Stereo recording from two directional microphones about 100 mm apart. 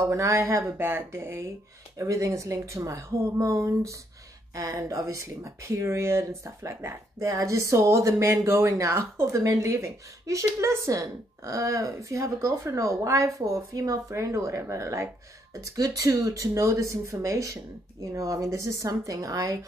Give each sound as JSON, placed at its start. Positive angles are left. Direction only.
{"t": 0.0, "sound": "speech", "side_deg": -25}